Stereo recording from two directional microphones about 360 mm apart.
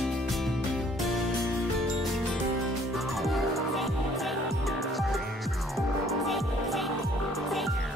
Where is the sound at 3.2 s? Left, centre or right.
Centre.